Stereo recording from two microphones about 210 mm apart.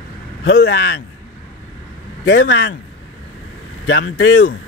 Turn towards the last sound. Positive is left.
turn(degrees=65)  # may be behind; listen again after turning